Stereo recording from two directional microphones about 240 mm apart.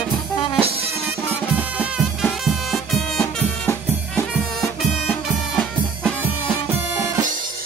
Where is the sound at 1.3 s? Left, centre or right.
Centre.